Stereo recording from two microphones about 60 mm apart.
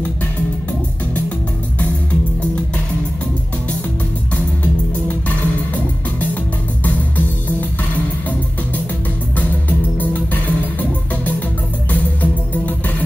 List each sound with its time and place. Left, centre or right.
6.8 s music: left
9.4 s music: left